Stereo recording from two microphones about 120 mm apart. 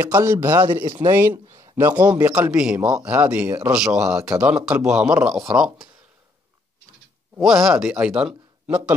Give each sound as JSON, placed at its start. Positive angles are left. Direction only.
{"t": 0.0, "sound": "a man's voice", "side_deg": -20}
{"t": 0.7, "sound": "speech", "side_deg": -35}
{"t": 1.1, "sound": "a man's voice", "side_deg": -20}
{"t": 1.5, "sound": "a sound", "side_deg": -25}
{"t": 2.1, "sound": "a man's voice", "side_deg": -15}
{"t": 7.3, "sound": "a man's voice", "side_deg": 0}